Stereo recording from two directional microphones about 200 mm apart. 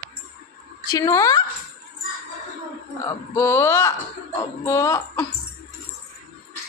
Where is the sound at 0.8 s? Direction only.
15° left (ahead or behind).